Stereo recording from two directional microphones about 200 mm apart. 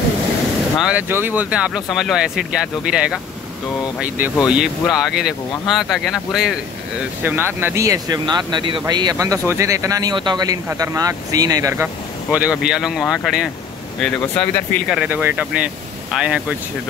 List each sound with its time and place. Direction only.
0.7 s speech: 5° right (ahead or behind)
4.5 s speech: 5° right (ahead or behind)
15.0 s speech: 10° right (ahead or behind)